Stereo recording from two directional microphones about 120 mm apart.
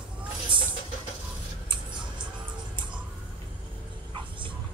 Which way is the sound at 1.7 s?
40° right (ahead or behind).